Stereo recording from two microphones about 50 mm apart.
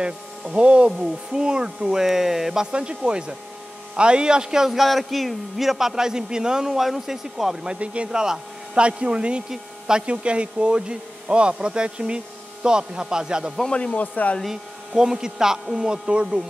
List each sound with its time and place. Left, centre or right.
0.0 s a man's voice: right
2.7 s a man's voice: centre
13.7 s speech: centre
13.9 s speech: left
14.4 s speech: centre
15.0 s a man's voice: centre